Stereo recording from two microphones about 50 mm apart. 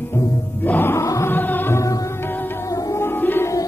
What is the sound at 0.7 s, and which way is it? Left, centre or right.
Music, left.